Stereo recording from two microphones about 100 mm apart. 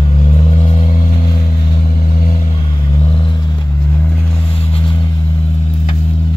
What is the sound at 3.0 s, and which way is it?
Vehicle, 55° left (ahead or behind).